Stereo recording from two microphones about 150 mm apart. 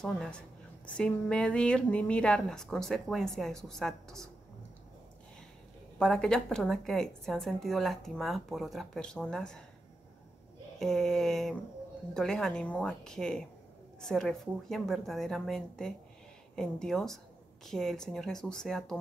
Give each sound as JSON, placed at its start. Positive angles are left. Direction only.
{"t": 0.0, "sound": "a woman's voice", "side_deg": 5}
{"t": 5.9, "sound": "a woman's voice", "side_deg": 5}
{"t": 10.8, "sound": "a woman's voice", "side_deg": 0}